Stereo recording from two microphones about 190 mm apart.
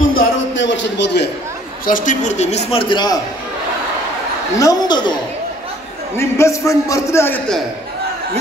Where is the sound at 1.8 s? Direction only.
45° left (ahead or behind); by 3.2 s 20° left (ahead or behind).